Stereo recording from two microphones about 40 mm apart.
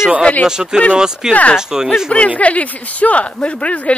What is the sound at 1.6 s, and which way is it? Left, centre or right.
Speech, centre.